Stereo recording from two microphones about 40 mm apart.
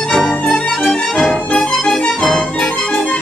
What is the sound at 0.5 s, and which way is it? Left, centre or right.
Music, left.